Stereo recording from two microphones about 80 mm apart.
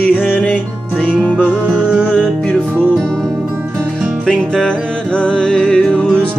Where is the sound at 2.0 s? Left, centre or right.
Centre.